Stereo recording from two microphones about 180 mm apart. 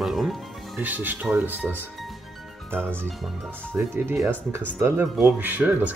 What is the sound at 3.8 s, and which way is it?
Speech, 15° right (ahead or behind).